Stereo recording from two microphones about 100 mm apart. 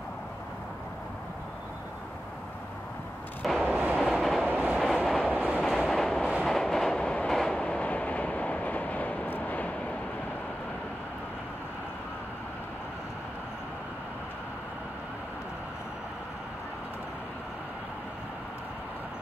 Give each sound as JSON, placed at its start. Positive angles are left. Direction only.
{"t": 3.4, "sound": "artillery fire", "side_deg": 5}
{"t": 3.7, "sound": "train", "side_deg": -15}
{"t": 4.0, "sound": "train", "side_deg": 0}
{"t": 4.5, "sound": "train", "side_deg": -15}
{"t": 4.8, "sound": "train", "side_deg": 0}
{"t": 5.3, "sound": "train", "side_deg": -15}
{"t": 5.9, "sound": "train", "side_deg": 5}